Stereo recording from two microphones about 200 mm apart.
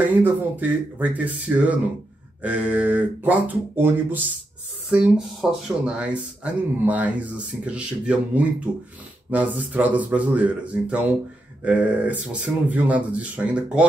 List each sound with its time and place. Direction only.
0.0 s speech: 10° right (ahead or behind)